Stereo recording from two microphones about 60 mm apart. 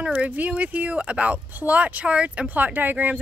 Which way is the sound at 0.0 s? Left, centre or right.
Right.